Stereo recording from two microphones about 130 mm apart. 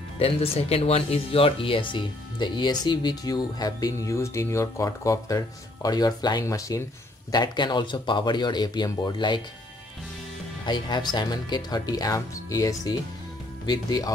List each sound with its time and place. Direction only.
0.2 s speech: 50° left (ahead or behind); by 9.4 s 35° left (ahead or behind)
10.6 s speech: 35° left (ahead or behind)